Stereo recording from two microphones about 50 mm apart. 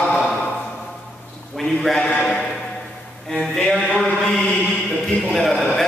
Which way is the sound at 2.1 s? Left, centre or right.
Left.